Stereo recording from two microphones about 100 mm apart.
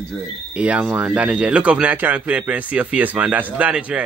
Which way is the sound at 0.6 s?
15° right (ahead or behind).